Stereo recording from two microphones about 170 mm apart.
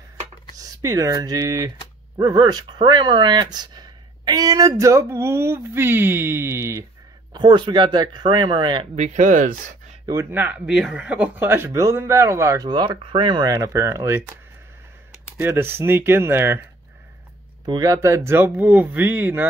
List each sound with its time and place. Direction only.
0.6 s speech: 20° right (ahead or behind)
7.3 s speech: 25° right (ahead or behind)
8.9 s speech: 45° right (ahead or behind)
10.0 s speech: 15° right (ahead or behind)
17.6 s speech: 20° right (ahead or behind)